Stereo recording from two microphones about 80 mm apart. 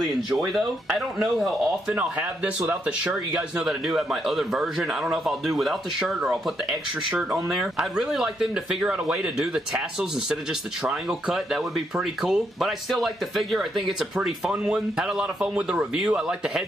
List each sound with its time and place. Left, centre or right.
0.0 s speech: centre
2.0 s speech: centre